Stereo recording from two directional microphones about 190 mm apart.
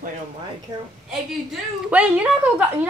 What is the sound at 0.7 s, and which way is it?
Speech, 20° right (ahead or behind).